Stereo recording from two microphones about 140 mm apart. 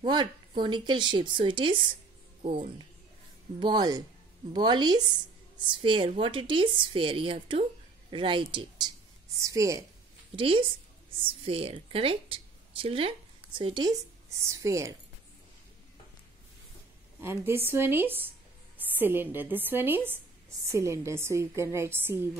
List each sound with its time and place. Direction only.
0.0 s speech: 30° right (ahead or behind)
3.5 s a woman's voice: 30° right (ahead or behind)
10.3 s a woman's voice: 40° right (ahead or behind)
14.5 s a woman's voice: 20° right (ahead or behind)
17.2 s a woman's voice: 15° right (ahead or behind)